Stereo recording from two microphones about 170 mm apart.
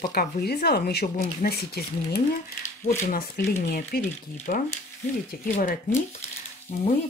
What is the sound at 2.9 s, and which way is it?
Speech, 50° left (ahead or behind).